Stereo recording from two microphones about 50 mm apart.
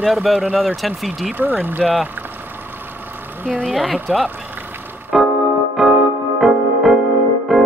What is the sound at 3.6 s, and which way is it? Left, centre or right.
Speech, centre.